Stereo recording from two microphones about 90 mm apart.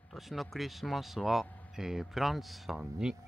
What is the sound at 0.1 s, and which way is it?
Speech, centre (ahead or behind).